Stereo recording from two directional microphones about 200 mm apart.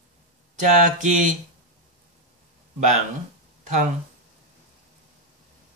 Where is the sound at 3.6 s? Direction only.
40° right (ahead or behind).